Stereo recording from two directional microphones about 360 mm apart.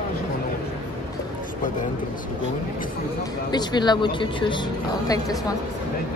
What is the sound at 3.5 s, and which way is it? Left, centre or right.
Speech, centre.